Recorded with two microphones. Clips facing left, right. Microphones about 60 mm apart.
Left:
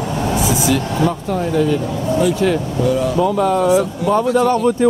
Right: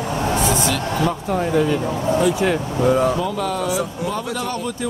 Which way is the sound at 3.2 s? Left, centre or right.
Centre.